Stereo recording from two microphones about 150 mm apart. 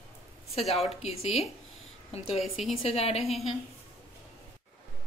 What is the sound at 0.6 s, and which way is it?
A woman's voice, 45° left (ahead or behind).